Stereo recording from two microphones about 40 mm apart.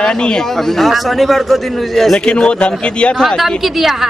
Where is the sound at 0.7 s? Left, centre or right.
Centre.